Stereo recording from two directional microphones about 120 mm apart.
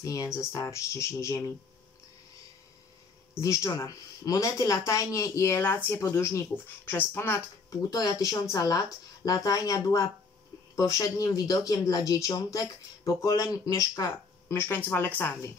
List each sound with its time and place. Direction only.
0.0 s speech: 30° left (ahead or behind)
3.3 s speech: 25° left (ahead or behind)
8.3 s speech: 30° left (ahead or behind); by 15.5 s 15° left (ahead or behind)